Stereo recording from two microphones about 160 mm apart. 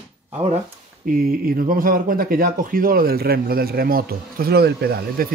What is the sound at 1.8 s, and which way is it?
Speech, 65° right (ahead or behind).